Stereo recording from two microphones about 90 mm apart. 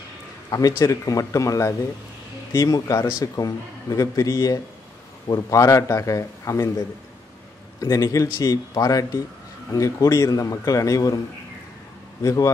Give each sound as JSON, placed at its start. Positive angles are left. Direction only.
{"t": 0.5, "sound": "a man's voice", "side_deg": 45}
{"t": 7.8, "sound": "a man's voice", "side_deg": 40}
{"t": 12.2, "sound": "a man's voice", "side_deg": 40}